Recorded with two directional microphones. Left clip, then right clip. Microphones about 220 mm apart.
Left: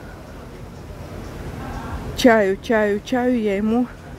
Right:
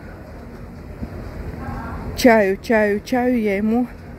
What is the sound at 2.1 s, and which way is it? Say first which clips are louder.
Speech: right 1 dB; 5° left (ahead or behind).